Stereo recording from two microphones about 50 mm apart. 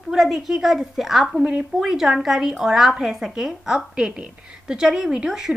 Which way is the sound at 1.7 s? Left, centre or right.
Centre.